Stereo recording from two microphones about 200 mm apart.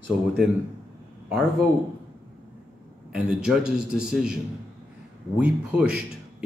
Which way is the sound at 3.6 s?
55° right (ahead or behind).